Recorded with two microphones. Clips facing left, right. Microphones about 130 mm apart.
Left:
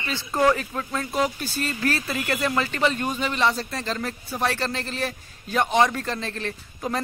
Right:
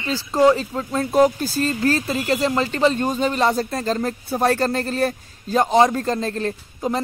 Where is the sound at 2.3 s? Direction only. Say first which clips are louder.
Right 4 dB; 25° right (ahead or behind).